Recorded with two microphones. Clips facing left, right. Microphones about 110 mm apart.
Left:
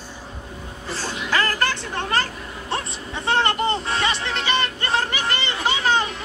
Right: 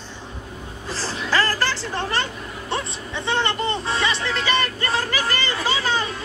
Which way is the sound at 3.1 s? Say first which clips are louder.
Left 2 dB; 35° left (ahead or behind).